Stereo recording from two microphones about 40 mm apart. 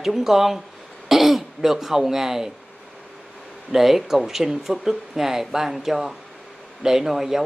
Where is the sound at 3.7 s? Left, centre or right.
Centre.